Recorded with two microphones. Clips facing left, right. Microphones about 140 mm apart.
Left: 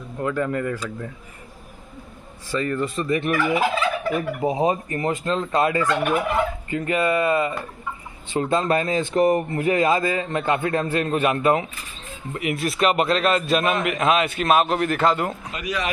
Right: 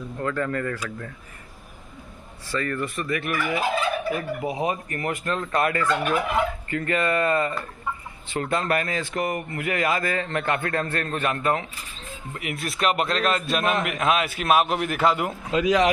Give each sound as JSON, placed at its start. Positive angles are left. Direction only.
{"t": 0.2, "sound": "speech", "side_deg": 15}
{"t": 2.5, "sound": "speech", "side_deg": 20}
{"t": 3.5, "sound": "fowl", "side_deg": 90}
{"t": 4.4, "sound": "speech", "side_deg": 30}
{"t": 12.4, "sound": "a man's voice", "side_deg": 0}
{"t": 15.6, "sound": "speech", "side_deg": -90}